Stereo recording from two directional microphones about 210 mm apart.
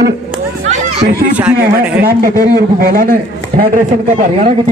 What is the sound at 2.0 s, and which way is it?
Speech, 45° right (ahead or behind).